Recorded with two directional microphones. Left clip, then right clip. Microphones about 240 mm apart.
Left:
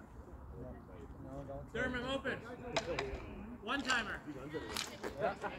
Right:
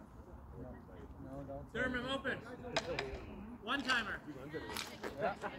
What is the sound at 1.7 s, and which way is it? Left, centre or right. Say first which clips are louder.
Speech: even; centre.